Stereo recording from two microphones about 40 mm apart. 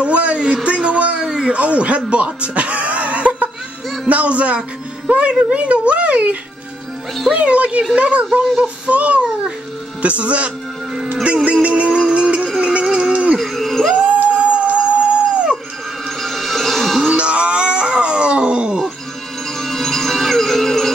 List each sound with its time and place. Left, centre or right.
0.0 s a woman's voice: right
0.7 s a sound: right
1.2 s a sound: centre
1.5 s a child's voice: right
7.3 s a child's voice: right
12.1 s music: right
13.4 s a sound: centre
14.0 s dog: right
16.2 s music: centre
17.1 s dog: right
19.6 s music: centre